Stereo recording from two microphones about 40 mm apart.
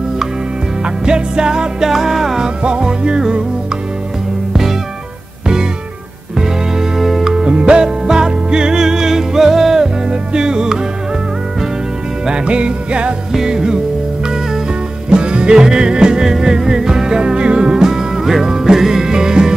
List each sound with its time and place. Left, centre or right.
0.8 s music: right
7.0 s music: centre
7.4 s music: right
12.3 s music: right
13.3 s music: centre
15.0 s music: right